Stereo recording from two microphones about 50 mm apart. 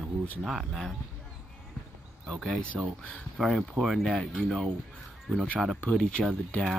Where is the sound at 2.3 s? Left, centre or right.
Centre.